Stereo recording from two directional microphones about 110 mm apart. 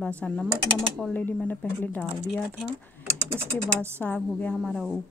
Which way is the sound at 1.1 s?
15° left (ahead or behind).